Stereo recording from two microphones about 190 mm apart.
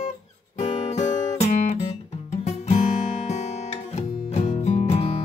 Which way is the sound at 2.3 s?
35° left (ahead or behind).